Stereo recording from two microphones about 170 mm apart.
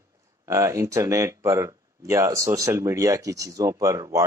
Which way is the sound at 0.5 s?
15° right (ahead or behind).